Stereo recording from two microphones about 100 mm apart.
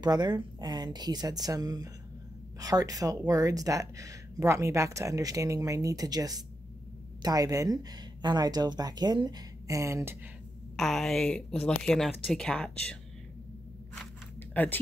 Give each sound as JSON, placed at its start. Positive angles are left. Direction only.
{"t": 0.0, "sound": "a woman's voice", "side_deg": -45}
{"t": 10.8, "sound": "a woman's voice", "side_deg": 5}
{"t": 14.5, "sound": "speech", "side_deg": 20}